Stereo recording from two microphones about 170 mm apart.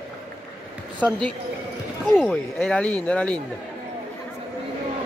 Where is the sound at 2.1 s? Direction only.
Centre (ahead or behind).